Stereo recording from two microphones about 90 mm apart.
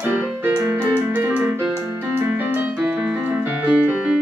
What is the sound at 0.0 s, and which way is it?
Keyboard, 25° right (ahead or behind).